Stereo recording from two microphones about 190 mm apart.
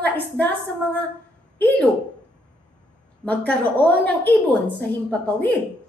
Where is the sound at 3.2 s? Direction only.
5° left (ahead or behind).